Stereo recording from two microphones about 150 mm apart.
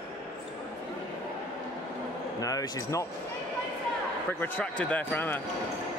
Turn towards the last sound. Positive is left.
turn(degrees=10)  # may be behind; listen again after turning